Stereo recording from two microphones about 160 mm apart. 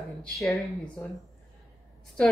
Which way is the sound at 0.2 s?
Centre (ahead or behind).